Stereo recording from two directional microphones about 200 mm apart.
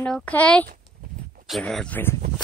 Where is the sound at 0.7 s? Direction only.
45° right (ahead or behind).